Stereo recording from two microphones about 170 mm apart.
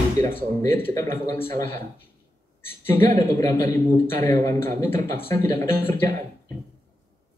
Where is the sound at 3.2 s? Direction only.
15° left (ahead or behind).